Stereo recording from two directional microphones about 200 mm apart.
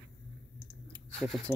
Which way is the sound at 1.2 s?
Centre (ahead or behind).